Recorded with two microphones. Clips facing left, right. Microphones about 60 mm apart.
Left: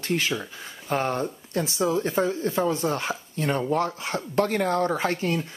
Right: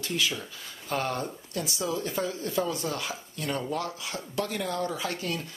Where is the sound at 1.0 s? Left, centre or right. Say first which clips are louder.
Left 4 dB; left.